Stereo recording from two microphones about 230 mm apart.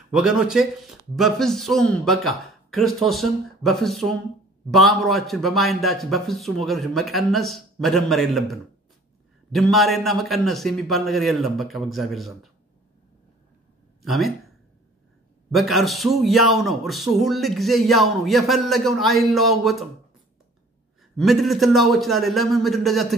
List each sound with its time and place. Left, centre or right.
0.1 s speech: centre
14.0 s speech: centre
15.5 s speech: centre
21.2 s speech: centre